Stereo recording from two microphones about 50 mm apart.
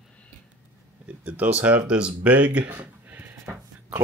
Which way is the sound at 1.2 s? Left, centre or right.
Right.